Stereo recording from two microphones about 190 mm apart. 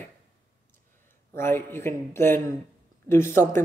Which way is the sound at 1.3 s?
10° left (ahead or behind).